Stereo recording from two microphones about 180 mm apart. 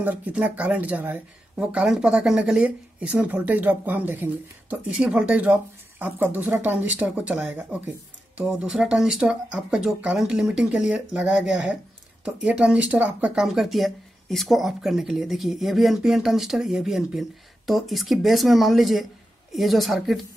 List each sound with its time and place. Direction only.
0.0 s speech: 10° right (ahead or behind)